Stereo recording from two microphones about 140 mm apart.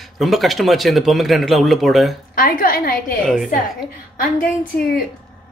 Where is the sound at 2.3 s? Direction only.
90° left.